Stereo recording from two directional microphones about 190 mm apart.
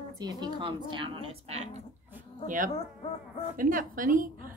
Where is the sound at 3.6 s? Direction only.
45° right (ahead or behind).